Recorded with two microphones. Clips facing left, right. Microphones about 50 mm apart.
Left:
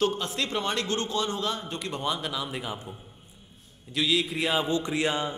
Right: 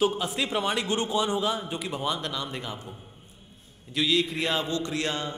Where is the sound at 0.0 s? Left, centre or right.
Centre.